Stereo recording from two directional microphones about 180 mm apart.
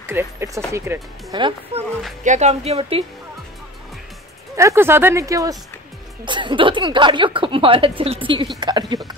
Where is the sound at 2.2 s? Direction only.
40° right (ahead or behind).